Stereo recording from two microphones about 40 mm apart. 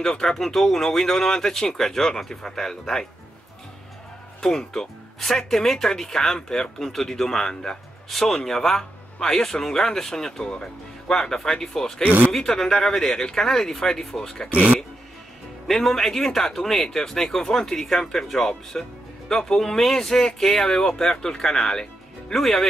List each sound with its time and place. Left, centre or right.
0.0 s speech: centre
4.4 s speech: centre
14.5 s speech: right
15.6 s speech: centre